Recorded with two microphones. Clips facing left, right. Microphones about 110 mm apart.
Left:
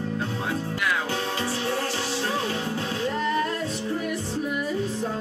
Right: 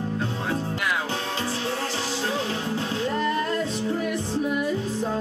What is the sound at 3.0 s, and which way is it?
Music, centre (ahead or behind).